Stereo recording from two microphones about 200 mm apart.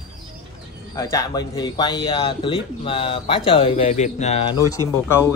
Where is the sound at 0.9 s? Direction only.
15° left (ahead or behind).